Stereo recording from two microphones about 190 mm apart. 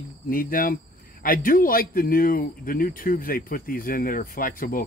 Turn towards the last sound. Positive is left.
turn(degrees=50)  # may be behind; listen again after turning